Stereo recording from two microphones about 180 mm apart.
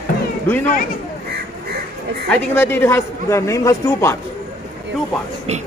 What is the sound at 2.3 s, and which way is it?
A man's voice, 10° left (ahead or behind).